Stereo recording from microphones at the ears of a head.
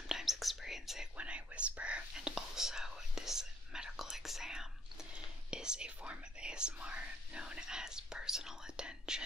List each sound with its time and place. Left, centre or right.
0.1 s whispering: centre